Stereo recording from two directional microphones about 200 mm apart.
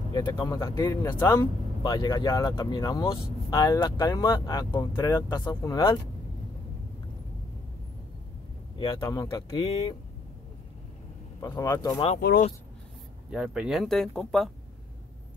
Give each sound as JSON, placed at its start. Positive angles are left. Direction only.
{"t": 0.1, "sound": "speech", "side_deg": 15}
{"t": 8.7, "sound": "speech", "side_deg": 20}
{"t": 11.4, "sound": "speech", "side_deg": 15}
{"t": 12.2, "sound": "speech", "side_deg": 50}
{"t": 13.3, "sound": "speech", "side_deg": -5}